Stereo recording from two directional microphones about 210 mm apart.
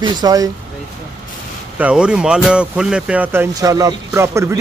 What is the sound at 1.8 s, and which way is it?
Speech, 5° right (ahead or behind).